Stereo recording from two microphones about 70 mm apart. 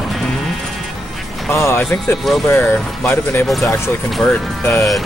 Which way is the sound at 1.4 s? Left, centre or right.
Left.